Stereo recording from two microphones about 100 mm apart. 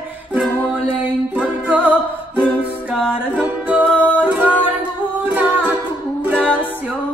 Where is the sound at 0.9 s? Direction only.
15° right (ahead or behind).